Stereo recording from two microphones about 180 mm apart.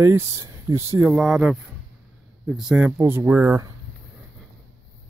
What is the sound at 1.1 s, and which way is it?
Speech, 5° right (ahead or behind).